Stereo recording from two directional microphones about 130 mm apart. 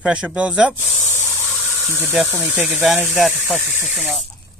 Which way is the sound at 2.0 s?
15° right (ahead or behind).